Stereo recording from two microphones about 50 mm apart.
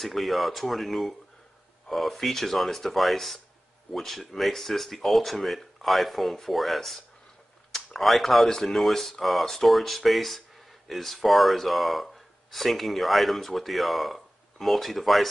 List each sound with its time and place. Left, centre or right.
0.0 s speech: centre